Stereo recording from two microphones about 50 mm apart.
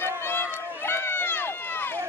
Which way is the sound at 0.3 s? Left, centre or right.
Left.